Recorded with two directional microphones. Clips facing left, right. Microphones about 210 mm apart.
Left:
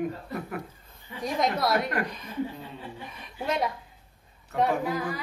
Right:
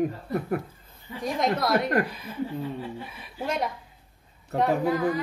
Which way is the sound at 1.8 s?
40° right (ahead or behind).